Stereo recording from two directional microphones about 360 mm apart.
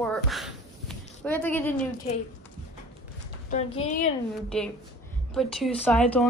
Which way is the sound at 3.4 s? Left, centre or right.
Left.